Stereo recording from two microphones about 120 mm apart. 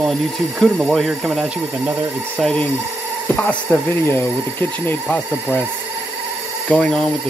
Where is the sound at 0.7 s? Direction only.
Centre (ahead or behind).